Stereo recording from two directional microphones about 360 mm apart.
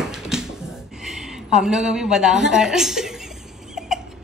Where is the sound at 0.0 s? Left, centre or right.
Centre.